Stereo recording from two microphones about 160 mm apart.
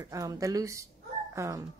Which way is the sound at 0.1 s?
20° right (ahead or behind).